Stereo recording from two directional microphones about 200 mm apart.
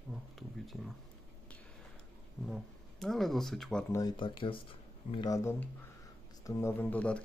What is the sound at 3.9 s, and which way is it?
Speech, 20° left (ahead or behind).